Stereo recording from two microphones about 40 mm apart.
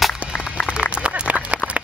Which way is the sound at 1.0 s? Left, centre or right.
Right.